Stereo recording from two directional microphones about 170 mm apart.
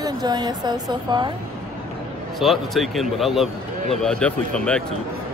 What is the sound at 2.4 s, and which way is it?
Speech, centre (ahead or behind).